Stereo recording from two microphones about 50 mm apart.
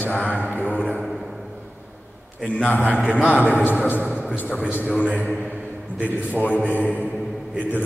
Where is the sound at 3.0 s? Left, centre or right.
Right.